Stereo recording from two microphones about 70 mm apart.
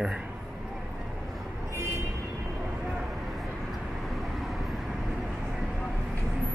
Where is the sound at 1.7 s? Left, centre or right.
Right.